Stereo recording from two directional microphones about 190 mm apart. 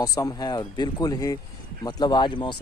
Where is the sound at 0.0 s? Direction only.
20° left (ahead or behind).